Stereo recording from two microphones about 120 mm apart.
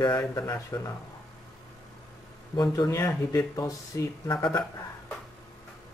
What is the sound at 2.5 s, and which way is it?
Speech, 35° left (ahead or behind).